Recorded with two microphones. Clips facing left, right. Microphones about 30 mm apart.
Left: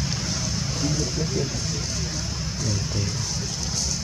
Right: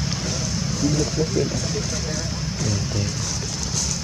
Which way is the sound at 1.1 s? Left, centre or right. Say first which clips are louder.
Right 5 dB; centre.